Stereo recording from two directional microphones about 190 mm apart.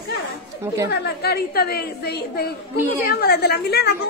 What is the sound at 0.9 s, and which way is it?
A woman's voice, 55° left (ahead or behind).